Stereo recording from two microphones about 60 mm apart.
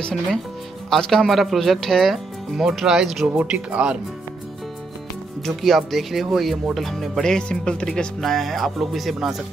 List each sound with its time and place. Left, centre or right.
0.8 s speech: centre
2.5 s speech: centre
3.3 s speech: right
5.4 s speech: centre